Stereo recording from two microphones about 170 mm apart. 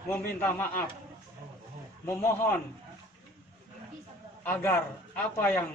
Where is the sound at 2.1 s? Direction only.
15° left (ahead or behind).